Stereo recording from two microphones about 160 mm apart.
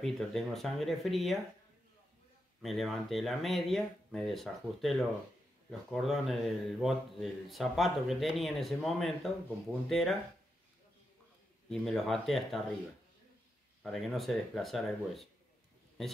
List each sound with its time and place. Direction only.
0.0 s speech: centre (ahead or behind)
2.6 s speech: centre (ahead or behind)
11.7 s speech: 5° left (ahead or behind)
13.8 s speech: centre (ahead or behind)